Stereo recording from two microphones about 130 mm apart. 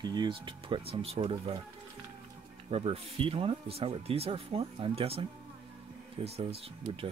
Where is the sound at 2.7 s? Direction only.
50° right (ahead or behind).